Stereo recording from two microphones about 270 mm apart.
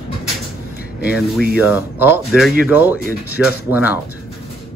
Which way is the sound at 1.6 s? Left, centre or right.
Centre.